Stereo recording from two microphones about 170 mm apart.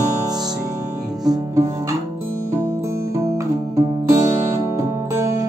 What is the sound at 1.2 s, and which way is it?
Music, 20° right (ahead or behind).